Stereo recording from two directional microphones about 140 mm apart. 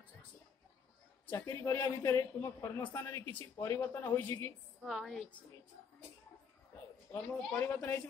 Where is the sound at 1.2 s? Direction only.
20° left (ahead or behind).